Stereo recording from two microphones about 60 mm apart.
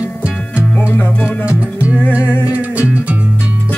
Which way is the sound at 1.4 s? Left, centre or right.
Right.